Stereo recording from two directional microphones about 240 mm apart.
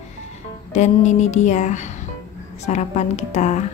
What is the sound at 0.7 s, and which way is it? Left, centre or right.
A woman's voice, left.